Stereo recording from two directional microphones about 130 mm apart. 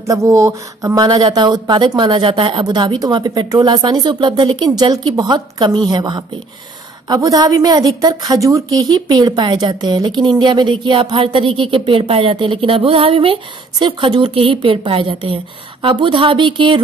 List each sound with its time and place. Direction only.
0.0 s a woman's voice: 25° right (ahead or behind); by 16.8 s 40° right (ahead or behind)